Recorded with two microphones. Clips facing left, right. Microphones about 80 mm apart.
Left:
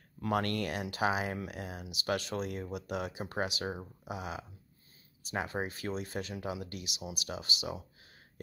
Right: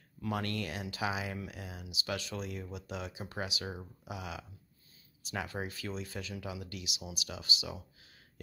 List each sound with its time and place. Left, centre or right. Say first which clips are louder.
0.2 s speech: left 4 dB; left